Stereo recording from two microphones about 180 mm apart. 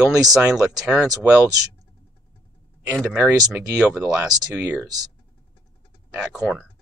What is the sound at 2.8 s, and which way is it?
Speech, 10° right (ahead or behind).